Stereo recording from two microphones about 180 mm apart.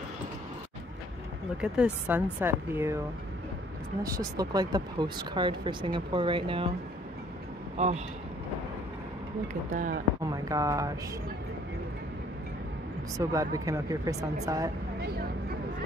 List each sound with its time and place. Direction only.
1.6 s speech: 5° right (ahead or behind)
4.0 s speech: 20° right (ahead or behind)
7.7 s a man's voice: 40° right (ahead or behind)
9.5 s speech: 45° right (ahead or behind)
10.2 s speech: 20° right (ahead or behind)
13.2 s speech: 20° right (ahead or behind)